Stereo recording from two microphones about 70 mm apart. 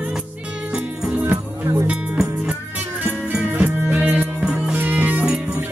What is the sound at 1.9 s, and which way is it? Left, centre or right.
Music, centre.